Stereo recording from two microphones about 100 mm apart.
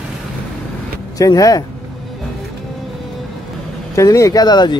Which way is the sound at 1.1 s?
35° left (ahead or behind).